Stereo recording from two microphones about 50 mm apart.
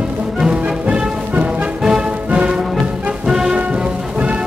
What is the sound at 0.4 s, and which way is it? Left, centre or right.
Music, centre.